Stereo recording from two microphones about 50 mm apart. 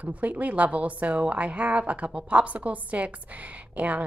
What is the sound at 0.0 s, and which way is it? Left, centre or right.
Speech, right.